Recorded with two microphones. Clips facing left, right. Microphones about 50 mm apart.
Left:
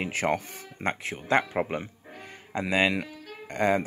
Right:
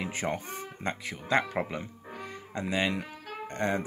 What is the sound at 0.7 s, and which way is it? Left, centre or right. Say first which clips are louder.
Speech: left 6 dB; left.